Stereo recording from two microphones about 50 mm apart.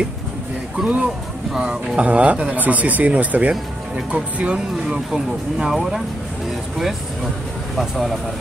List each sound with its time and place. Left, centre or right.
0.8 s speech: right
1.5 s speech: centre
2.0 s speech: right
5.1 s speech: centre
7.7 s speech: centre